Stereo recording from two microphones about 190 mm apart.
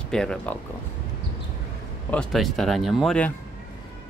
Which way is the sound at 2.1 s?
5° left (ahead or behind).